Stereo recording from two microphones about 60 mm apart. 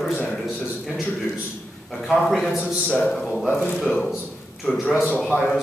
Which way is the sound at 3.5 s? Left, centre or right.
Left.